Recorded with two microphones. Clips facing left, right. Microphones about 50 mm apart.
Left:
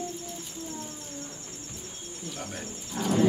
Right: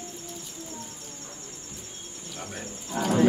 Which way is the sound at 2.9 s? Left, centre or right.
Right.